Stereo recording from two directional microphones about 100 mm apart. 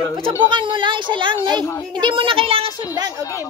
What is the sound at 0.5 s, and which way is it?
A child's voice, 55° right (ahead or behind).